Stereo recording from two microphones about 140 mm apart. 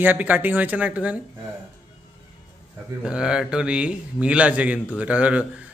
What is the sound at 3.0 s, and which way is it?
Speech, 5° right (ahead or behind).